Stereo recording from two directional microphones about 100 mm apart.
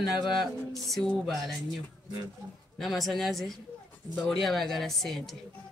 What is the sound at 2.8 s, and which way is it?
A woman's voice, centre (ahead or behind).